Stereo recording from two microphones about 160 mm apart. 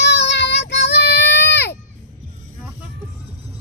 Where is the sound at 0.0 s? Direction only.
90° left.